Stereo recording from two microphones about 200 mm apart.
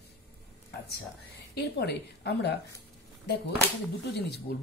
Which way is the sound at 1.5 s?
55° left (ahead or behind).